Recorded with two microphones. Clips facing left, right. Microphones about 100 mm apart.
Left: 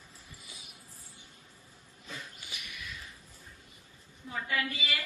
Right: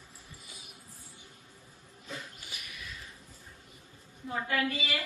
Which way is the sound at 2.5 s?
35° right (ahead or behind).